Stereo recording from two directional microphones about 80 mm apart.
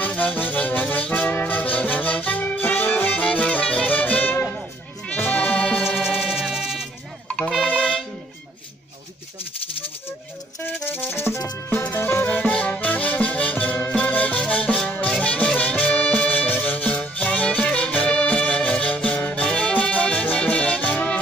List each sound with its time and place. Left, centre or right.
0.0 s music: left
5.8 s music: centre
7.2 s music: centre
10.6 s music: left